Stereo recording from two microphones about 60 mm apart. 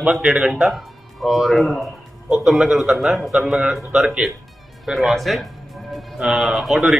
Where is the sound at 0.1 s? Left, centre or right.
Centre.